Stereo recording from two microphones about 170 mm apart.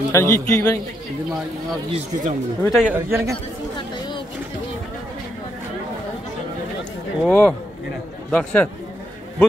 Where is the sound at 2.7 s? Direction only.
10° right (ahead or behind).